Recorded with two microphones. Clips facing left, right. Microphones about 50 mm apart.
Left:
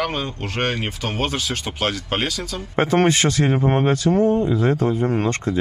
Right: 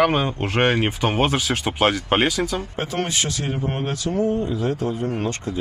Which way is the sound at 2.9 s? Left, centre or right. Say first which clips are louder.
Left 9 dB; left.